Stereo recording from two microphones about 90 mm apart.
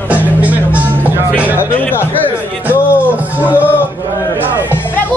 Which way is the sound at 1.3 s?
20° left (ahead or behind).